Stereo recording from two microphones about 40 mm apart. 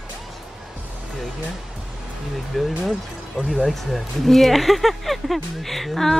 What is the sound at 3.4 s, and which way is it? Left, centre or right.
Speech, right.